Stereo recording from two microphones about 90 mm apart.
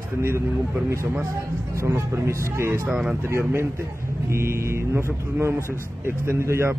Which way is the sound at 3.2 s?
30° right (ahead or behind).